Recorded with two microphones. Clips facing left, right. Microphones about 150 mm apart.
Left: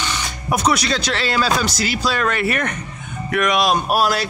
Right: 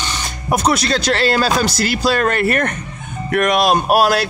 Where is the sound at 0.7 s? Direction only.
50° right (ahead or behind).